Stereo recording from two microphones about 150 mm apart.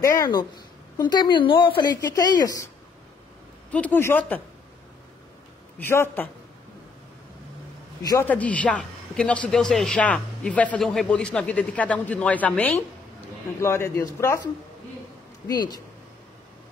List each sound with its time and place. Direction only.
0.2 s a woman's voice: 25° left (ahead or behind)
3.7 s a man's voice: 10° left (ahead or behind)
5.8 s a man's voice: 15° left (ahead or behind)
8.0 s a woman's voice: 25° left (ahead or behind)
8.3 s a man's voice: 10° left (ahead or behind); by 15.8 s 25° left (ahead or behind)